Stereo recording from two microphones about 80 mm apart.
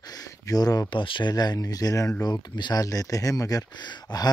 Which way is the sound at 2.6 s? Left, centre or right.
Left.